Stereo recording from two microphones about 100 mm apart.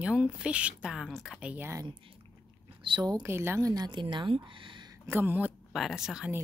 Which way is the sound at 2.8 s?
45° right (ahead or behind).